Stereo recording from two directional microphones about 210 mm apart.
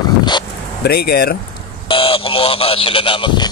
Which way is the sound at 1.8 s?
25° left (ahead or behind).